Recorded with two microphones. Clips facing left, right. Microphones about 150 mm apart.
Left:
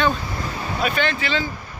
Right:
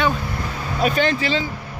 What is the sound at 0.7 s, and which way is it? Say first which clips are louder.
Speech: right 4 dB; 40° right (ahead or behind).